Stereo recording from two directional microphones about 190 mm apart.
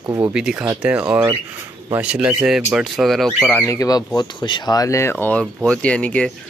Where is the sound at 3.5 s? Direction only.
15° left (ahead or behind).